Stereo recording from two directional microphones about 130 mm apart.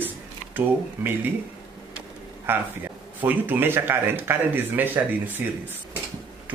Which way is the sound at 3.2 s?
15° right (ahead or behind).